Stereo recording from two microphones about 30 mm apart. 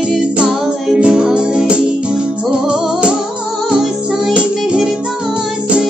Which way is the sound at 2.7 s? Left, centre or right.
Right.